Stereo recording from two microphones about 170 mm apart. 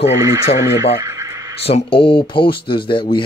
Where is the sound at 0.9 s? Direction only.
20° right (ahead or behind).